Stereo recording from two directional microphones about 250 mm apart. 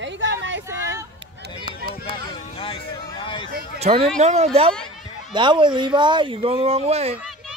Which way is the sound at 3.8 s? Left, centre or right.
Right.